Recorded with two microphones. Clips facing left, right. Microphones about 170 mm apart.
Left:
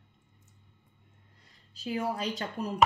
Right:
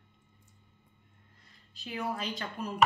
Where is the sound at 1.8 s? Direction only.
35° left (ahead or behind).